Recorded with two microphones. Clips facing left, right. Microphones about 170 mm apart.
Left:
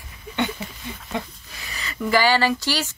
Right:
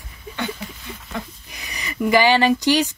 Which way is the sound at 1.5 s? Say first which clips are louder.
Right 2 dB; 15° right (ahead or behind).